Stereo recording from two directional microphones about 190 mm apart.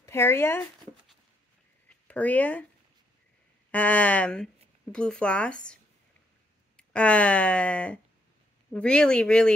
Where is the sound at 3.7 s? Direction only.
5° left (ahead or behind).